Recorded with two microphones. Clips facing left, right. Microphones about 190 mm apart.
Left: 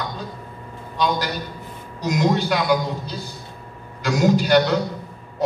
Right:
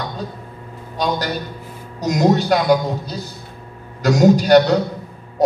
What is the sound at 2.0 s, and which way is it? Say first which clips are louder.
A man's voice: right 4 dB; 45° right (ahead or behind).